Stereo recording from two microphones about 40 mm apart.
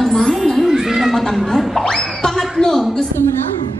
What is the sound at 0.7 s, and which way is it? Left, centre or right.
Cat, centre.